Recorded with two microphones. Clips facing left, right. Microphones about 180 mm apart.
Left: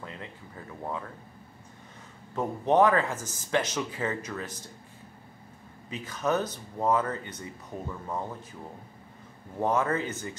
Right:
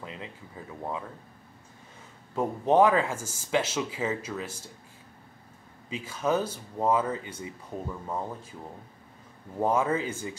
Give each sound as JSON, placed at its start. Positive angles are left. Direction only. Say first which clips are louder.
{"t": 0.0, "sound": "a sound", "louder": "right 1 dB", "side_deg": -15}
{"t": 2.3, "sound": "speech", "louder": "right 1 dB", "side_deg": -10}
{"t": 5.9, "sound": "speech", "louder": "right 1 dB", "side_deg": -10}
{"t": 9.6, "sound": "speech", "louder": "right 1 dB", "side_deg": -10}